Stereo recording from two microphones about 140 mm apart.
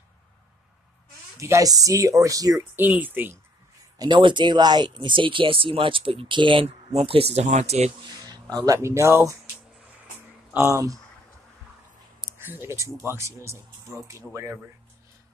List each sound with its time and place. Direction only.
1.4 s speech: 25° right (ahead or behind)
2.8 s speech: 15° right (ahead or behind)
4.0 s speech: 35° right (ahead or behind); by 7.9 s 50° right (ahead or behind)
8.2 s speech: 25° right (ahead or behind)
10.5 s speech: 20° right (ahead or behind)
12.4 s speech: 15° right (ahead or behind)